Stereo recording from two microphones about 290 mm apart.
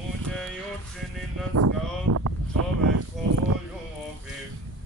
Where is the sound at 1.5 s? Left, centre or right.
Right.